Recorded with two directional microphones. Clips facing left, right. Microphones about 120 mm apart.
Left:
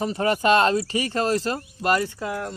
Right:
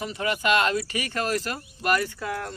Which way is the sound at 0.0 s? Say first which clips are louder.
Left 5 dB; 35° left (ahead or behind).